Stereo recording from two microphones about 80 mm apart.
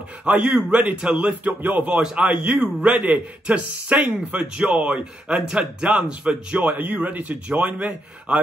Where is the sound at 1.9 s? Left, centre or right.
Centre.